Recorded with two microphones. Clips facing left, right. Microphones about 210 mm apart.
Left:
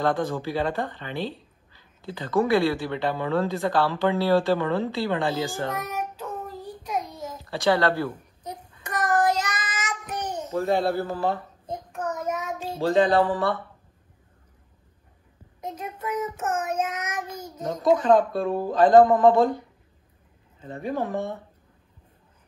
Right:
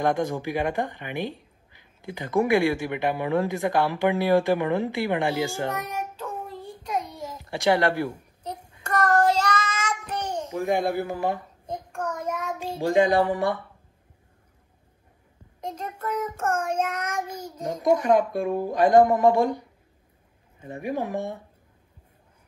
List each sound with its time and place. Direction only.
0.0 s speech: 15° right (ahead or behind)
6.2 s child singing: 10° right (ahead or behind)
7.4 s speech: 15° right (ahead or behind)
9.2 s child singing: 10° left (ahead or behind)
10.5 s speech: 15° right (ahead or behind)
11.6 s child singing: 5° left (ahead or behind)
12.5 s speech: 10° right (ahead or behind)
15.6 s child singing: 10° left (ahead or behind)
17.2 s speech: 10° right (ahead or behind)
20.6 s speech: 15° right (ahead or behind)